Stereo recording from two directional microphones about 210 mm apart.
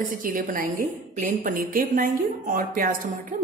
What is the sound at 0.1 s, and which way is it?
A woman's voice, 40° right (ahead or behind).